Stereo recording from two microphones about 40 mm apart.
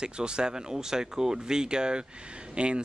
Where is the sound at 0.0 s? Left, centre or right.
Right.